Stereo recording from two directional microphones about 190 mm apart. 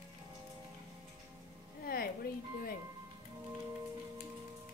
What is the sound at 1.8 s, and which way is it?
Music, 50° left (ahead or behind).